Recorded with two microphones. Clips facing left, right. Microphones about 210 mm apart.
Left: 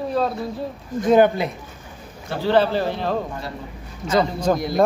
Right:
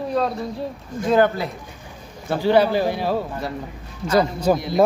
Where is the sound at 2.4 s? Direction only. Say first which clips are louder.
Right 1 dB; 10° right (ahead or behind).